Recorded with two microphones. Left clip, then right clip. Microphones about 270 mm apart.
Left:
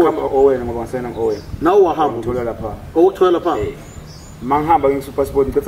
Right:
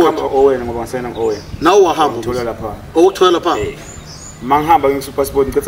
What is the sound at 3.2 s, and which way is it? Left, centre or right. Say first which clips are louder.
Speech: right 3 dB; centre.